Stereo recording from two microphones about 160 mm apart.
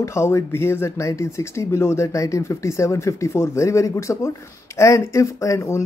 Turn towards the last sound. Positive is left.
turn(degrees=20)  # may be behind; listen again after turning